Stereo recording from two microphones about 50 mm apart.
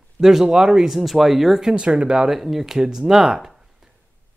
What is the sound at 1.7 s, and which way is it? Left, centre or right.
Speech, right.